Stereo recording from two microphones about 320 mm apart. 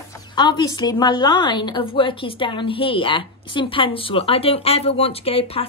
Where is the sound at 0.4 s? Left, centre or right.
Centre.